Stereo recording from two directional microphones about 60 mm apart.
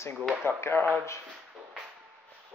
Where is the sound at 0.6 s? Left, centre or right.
Left.